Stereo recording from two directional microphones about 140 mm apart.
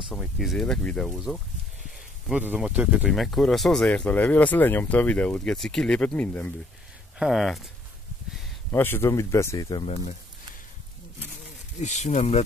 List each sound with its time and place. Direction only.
0.1 s speech: centre (ahead or behind)
7.2 s speech: centre (ahead or behind)
8.7 s speech: 15° left (ahead or behind)
9.8 s speech: 50° left (ahead or behind)
11.8 s speech: 55° left (ahead or behind)